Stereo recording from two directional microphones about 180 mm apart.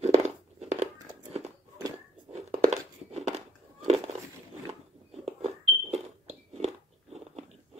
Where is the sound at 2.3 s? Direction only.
35° right (ahead or behind).